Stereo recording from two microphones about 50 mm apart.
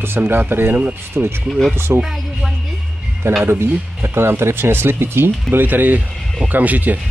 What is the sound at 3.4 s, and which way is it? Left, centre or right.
Speech, right.